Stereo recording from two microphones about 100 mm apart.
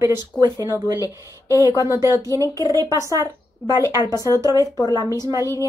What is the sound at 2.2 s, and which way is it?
A woman's voice, 35° right (ahead or behind).